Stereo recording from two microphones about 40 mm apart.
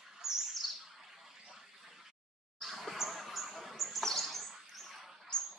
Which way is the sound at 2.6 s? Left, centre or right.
Centre.